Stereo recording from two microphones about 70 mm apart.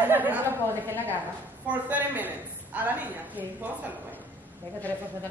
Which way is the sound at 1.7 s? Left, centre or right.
Right.